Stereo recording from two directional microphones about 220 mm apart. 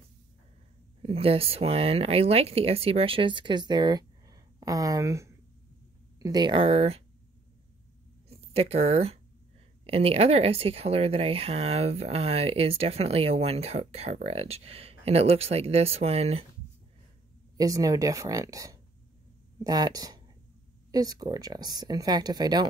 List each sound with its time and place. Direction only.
1.0 s speech: 25° right (ahead or behind)
8.3 s speech: 25° right (ahead or behind)
17.6 s speech: 15° right (ahead or behind)